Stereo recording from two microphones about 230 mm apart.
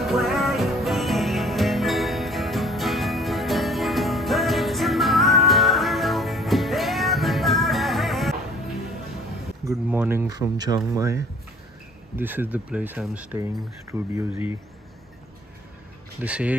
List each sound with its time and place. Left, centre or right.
0.0 s music: centre
9.7 s a sound: centre
10.9 s speech: centre
16.2 s speech: centre